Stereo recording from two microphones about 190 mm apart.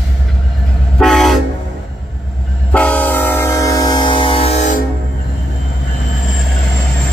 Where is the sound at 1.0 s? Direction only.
Centre (ahead or behind).